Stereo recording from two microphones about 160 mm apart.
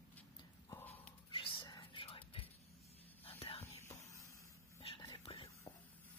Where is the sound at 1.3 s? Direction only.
30° left (ahead or behind).